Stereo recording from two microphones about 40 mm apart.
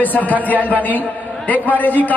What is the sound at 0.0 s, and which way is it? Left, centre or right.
A man's voice, left.